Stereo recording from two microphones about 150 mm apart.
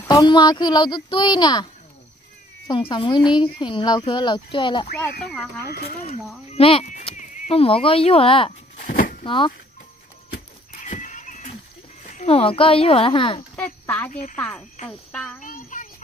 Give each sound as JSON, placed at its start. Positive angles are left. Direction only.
{"t": 0.1, "sound": "a child's voice", "side_deg": 25}
{"t": 2.7, "sound": "speech", "side_deg": 35}
{"t": 5.2, "sound": "speech", "side_deg": 10}
{"t": 6.5, "sound": "speech", "side_deg": 40}
{"t": 7.2, "sound": "a sound", "side_deg": 55}
{"t": 7.5, "sound": "speech", "side_deg": 40}
{"t": 8.8, "sound": "a sound", "side_deg": 60}
{"t": 9.2, "sound": "speech", "side_deg": 35}
{"t": 10.3, "sound": "neigh", "side_deg": 55}
{"t": 12.1, "sound": "speech", "side_deg": 45}
{"t": 13.6, "sound": "a sound", "side_deg": 10}
{"t": 14.3, "sound": "speech", "side_deg": 10}
{"t": 15.4, "sound": "a child's voice", "side_deg": 60}